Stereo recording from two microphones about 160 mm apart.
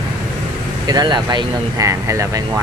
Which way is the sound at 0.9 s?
25° right (ahead or behind).